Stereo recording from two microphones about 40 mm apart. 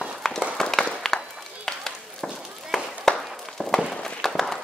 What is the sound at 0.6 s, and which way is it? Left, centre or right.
Applause, centre.